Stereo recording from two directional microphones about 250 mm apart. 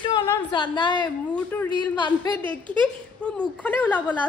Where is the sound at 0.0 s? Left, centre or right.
Centre.